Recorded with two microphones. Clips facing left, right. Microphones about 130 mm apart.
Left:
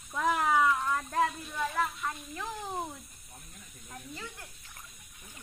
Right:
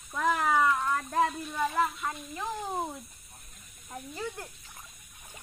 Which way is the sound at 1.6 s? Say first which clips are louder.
Right 3 dB; 10° right (ahead or behind).